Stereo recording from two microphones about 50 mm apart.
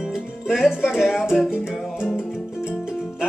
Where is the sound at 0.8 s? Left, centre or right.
Centre.